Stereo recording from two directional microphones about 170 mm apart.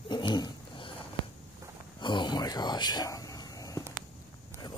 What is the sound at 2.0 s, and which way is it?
Speech, 25° left (ahead or behind).